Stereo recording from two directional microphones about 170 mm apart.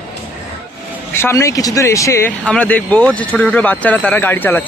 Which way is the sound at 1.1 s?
15° left (ahead or behind).